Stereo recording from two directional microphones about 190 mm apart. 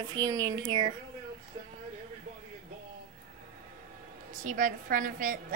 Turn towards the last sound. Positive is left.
turn(degrees=-45)  # may be behind; listen again after turning